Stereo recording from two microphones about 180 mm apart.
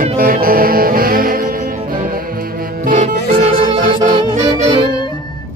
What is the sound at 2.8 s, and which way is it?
Music, 45° right (ahead or behind).